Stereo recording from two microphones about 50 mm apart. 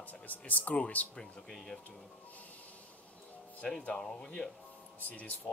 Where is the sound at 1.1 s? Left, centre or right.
Centre.